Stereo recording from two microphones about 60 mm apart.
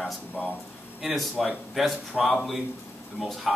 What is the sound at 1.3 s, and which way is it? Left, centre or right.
Speech, centre.